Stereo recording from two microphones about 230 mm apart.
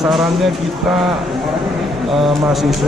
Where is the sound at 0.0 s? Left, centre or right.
Centre.